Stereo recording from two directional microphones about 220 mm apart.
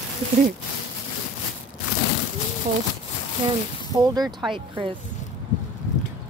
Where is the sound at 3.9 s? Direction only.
20° right (ahead or behind).